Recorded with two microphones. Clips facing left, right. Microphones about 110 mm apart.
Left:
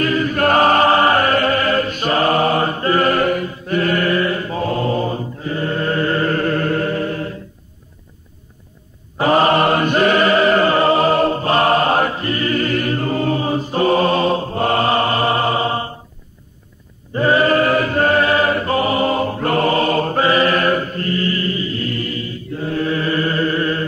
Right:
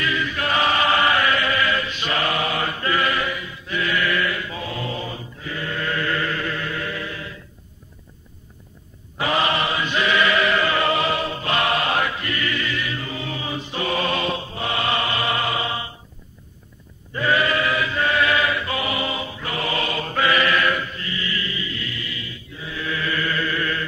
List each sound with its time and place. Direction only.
0.0 s chant: 45° left (ahead or behind)
9.2 s chant: 40° left (ahead or behind)
17.1 s chant: 35° left (ahead or behind)